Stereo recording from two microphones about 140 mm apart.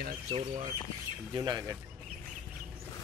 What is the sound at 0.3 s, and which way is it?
Speech, 50° right (ahead or behind).